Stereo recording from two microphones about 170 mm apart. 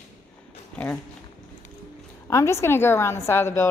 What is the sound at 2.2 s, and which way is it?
A woman's voice, 15° left (ahead or behind).